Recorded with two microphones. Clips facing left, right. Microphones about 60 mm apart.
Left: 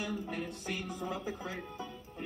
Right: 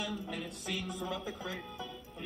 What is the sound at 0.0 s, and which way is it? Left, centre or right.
Speech, left.